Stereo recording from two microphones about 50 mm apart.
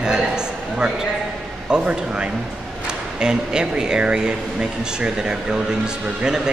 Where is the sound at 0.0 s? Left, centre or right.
Centre.